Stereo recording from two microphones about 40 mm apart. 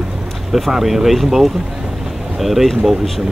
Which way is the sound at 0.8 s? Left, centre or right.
Centre.